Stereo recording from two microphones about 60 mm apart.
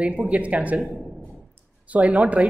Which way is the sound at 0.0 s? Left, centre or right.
Right.